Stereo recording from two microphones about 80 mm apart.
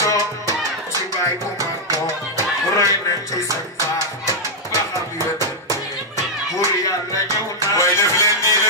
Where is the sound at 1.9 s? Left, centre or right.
Left.